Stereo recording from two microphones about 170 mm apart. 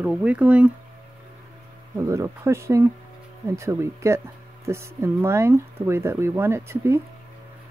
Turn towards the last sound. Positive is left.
turn(degrees=-15)  # may be behind; listen again after turning